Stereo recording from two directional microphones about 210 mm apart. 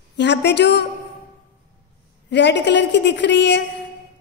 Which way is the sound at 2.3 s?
55° left (ahead or behind).